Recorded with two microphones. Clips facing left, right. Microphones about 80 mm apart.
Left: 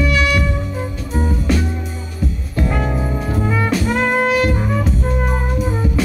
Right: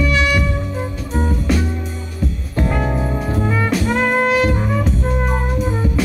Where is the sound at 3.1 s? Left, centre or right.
Centre.